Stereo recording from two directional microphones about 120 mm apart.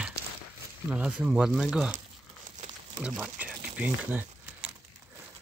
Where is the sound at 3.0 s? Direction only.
10° right (ahead or behind).